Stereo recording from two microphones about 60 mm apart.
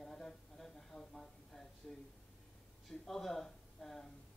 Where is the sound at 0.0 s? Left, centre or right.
Centre.